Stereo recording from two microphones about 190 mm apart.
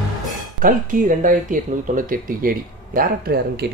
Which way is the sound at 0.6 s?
45° right (ahead or behind).